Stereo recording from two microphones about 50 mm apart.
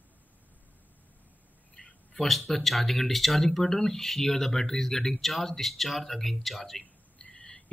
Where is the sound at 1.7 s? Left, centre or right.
Centre.